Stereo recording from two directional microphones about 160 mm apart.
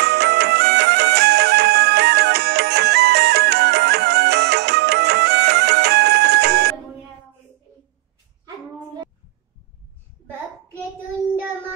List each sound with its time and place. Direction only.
0.0 s music: 90° right